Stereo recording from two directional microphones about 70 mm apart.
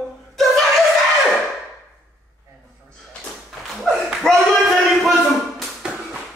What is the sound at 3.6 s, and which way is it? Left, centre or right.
Clapping, centre.